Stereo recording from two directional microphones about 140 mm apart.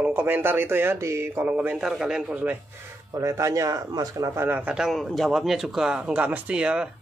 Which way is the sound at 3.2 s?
20° right (ahead or behind).